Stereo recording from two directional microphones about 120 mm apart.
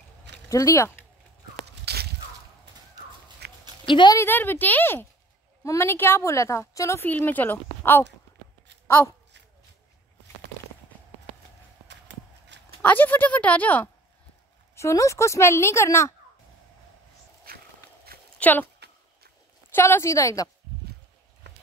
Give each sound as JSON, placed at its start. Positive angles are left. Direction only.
{"t": 0.5, "sound": "a woman's voice", "side_deg": 25}
{"t": 3.8, "sound": "speech", "side_deg": 45}
{"t": 4.1, "sound": "a woman's voice", "side_deg": 20}
{"t": 8.8, "sound": "a sound", "side_deg": 20}
{"t": 12.8, "sound": "speech", "side_deg": 15}
{"t": 14.8, "sound": "a woman's voice", "side_deg": 25}
{"t": 18.4, "sound": "speech", "side_deg": 15}
{"t": 19.7, "sound": "a woman's voice", "side_deg": 20}